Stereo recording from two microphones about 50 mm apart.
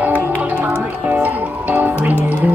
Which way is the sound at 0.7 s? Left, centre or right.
Right.